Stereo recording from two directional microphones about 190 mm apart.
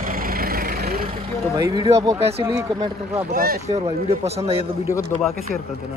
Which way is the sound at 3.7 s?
35° right (ahead or behind).